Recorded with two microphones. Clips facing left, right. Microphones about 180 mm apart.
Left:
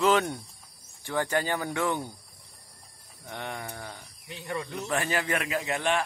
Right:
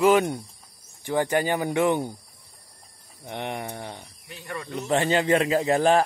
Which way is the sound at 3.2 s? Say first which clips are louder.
Right 5 dB; 20° right (ahead or behind).